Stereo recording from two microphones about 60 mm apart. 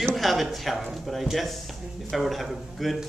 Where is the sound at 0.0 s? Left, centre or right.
Centre.